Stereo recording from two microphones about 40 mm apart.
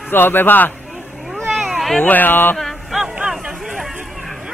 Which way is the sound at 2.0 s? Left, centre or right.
Left.